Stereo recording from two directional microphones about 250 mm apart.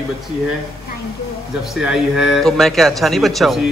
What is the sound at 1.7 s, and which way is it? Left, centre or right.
A man's voice, centre.